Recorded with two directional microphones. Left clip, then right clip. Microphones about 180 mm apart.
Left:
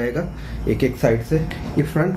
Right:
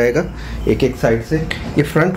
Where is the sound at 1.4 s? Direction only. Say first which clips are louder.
Right 6 dB; 45° right (ahead or behind).